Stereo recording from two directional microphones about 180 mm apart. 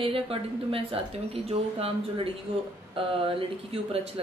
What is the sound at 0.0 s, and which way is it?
Speech, 30° right (ahead or behind).